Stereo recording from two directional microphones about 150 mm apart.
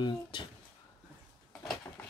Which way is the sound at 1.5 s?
Centre (ahead or behind).